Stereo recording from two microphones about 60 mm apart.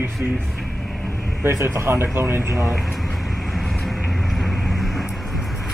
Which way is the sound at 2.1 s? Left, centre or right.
Right.